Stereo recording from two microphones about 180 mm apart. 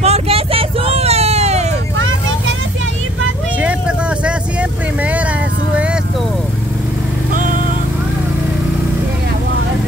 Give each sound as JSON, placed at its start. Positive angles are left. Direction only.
{"t": 0.0, "sound": "hubbub", "side_deg": -35}
{"t": 3.6, "sound": "vehicle", "side_deg": -5}